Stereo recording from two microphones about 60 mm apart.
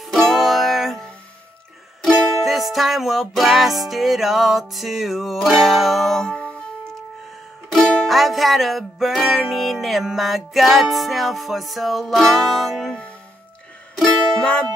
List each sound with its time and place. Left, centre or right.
0.0 s music: centre
2.0 s music: centre
6.2 s music: centre
8.1 s music: centre
14.4 s music: centre